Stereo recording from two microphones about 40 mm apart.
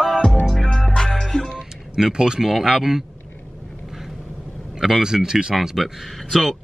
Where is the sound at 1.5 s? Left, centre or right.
Centre.